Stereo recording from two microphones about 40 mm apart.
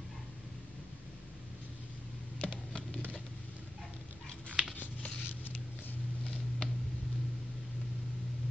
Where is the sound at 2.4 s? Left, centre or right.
Left.